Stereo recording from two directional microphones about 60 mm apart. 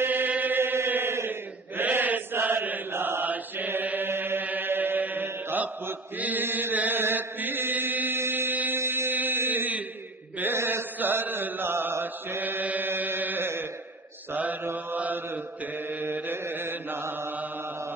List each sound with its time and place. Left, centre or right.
0.0 s chant: right
2.9 s mantra: right
10.4 s chant: right
14.3 s mantra: right